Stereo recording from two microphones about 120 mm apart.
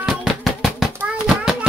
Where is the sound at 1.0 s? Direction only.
5° right (ahead or behind).